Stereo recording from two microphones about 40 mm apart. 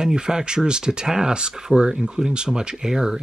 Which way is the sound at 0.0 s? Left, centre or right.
Centre.